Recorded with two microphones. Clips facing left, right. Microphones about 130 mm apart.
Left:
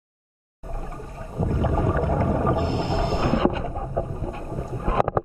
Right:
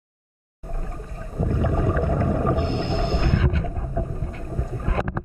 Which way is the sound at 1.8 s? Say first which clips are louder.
Even; 5° left (ahead or behind).